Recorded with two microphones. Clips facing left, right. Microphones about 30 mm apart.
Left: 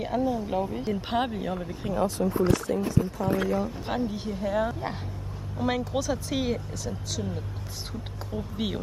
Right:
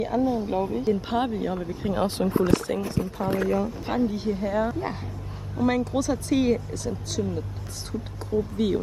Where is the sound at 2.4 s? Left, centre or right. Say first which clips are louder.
Right 2 dB; right.